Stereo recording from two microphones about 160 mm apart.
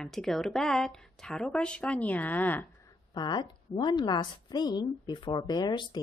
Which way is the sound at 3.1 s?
30° left (ahead or behind).